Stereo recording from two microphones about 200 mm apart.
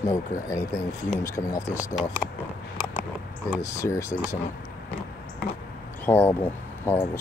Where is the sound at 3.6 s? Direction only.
15° left (ahead or behind).